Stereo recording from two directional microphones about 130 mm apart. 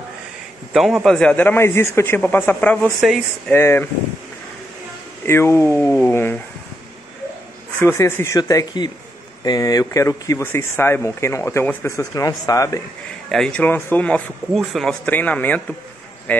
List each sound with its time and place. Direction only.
0.7 s a man's voice: centre (ahead or behind); by 3.9 s 15° left (ahead or behind)
5.2 s speech: 20° left (ahead or behind)
7.8 s speech: 20° left (ahead or behind)
13.3 s a man's voice: 5° left (ahead or behind)
15.0 s a man's voice: 10° left (ahead or behind)